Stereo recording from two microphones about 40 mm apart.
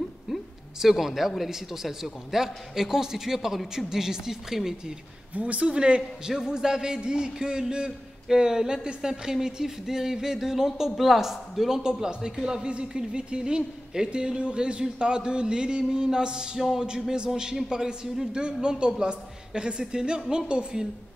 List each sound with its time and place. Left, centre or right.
0.3 s a sound: centre
0.7 s a man's voice: centre
5.3 s speech: right
6.3 s a man's voice: centre
11.8 s a man's voice: centre